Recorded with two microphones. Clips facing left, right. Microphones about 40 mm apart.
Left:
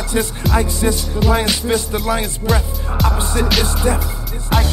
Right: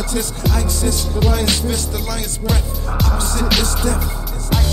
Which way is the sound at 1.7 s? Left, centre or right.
Left.